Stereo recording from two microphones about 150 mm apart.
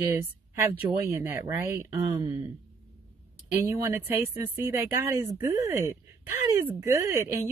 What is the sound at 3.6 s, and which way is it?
Speech, 15° right (ahead or behind).